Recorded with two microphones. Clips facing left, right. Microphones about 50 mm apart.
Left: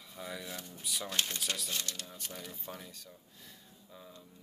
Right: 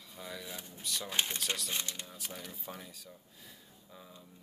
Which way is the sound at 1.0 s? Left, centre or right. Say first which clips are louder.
Right 1 dB; centre.